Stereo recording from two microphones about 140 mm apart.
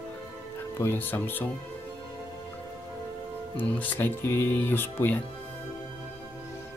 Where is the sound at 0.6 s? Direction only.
15° left (ahead or behind).